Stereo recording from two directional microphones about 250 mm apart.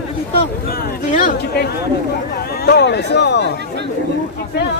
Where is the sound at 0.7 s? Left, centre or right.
Left.